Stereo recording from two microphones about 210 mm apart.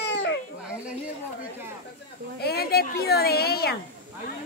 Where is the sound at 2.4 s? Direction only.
50° left (ahead or behind).